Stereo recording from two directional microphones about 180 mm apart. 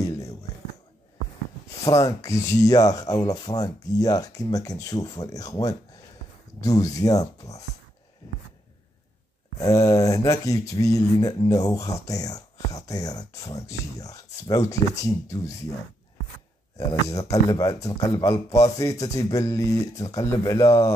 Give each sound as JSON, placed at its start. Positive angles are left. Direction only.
{"t": 1.9, "sound": "speech", "side_deg": 20}
{"t": 9.6, "sound": "speech", "side_deg": 20}
{"t": 16.7, "sound": "speech", "side_deg": 20}